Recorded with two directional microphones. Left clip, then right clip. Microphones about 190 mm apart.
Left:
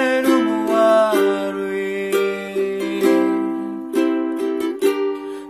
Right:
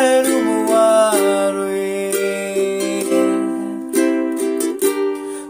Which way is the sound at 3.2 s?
25° right (ahead or behind).